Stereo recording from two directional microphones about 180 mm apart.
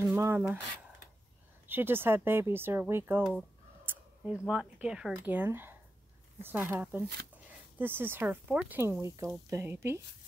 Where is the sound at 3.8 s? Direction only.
5° right (ahead or behind).